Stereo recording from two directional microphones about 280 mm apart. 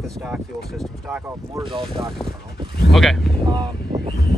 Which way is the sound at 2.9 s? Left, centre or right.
Centre.